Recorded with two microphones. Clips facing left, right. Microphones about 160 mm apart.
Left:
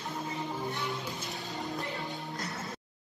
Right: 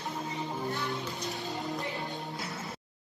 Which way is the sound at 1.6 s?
Centre (ahead or behind).